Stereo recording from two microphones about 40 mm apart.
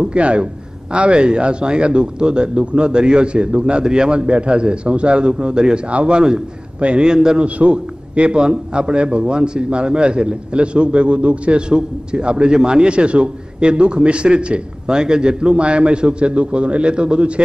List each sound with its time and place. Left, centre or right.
0.0 s a man's voice: right
5.9 s a man's voice: right
6.1 s a man's voice: right
7.4 s a man's voice: right